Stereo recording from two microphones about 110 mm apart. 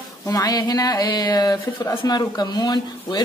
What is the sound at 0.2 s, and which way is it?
Speech, 35° left (ahead or behind).